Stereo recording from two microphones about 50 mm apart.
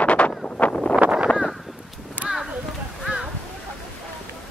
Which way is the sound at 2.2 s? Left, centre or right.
Centre.